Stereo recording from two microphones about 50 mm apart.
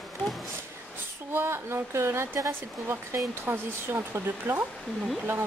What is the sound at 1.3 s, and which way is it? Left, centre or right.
Speech, right.